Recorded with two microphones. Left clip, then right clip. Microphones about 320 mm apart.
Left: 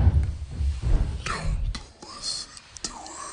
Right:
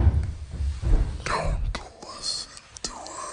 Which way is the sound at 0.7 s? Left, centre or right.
Left.